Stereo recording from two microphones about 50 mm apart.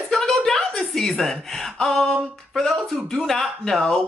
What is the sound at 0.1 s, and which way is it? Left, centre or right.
Music, centre.